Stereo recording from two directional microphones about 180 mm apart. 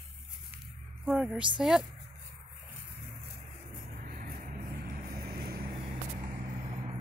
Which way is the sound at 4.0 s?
50° right (ahead or behind).